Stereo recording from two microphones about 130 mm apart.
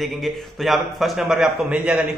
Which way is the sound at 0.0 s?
Centre (ahead or behind).